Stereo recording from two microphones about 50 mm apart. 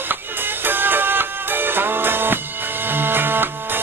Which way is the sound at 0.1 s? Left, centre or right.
Right.